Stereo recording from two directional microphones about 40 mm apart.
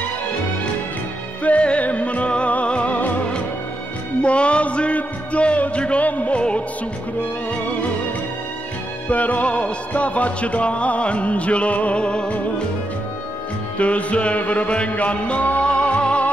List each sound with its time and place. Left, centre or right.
1.4 s music: left
4.2 s a sound: left
6.0 s music: left
9.1 s music: left
13.7 s music: left